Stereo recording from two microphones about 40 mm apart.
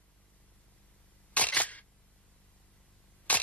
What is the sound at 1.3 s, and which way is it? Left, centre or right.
Single-lens reflex camera, left.